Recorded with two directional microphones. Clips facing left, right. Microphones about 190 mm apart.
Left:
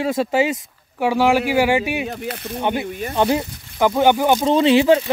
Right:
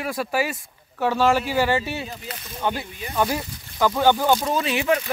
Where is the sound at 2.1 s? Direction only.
65° left (ahead or behind).